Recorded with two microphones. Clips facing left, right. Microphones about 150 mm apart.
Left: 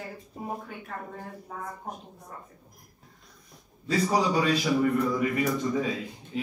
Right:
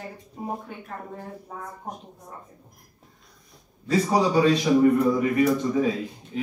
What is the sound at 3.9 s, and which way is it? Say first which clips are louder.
Speech: right 4 dB; 25° right (ahead or behind).